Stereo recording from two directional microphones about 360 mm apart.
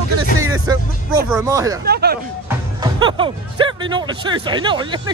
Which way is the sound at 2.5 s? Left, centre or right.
Centre.